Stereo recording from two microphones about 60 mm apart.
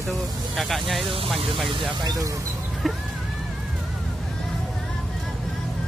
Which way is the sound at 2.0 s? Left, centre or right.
Right.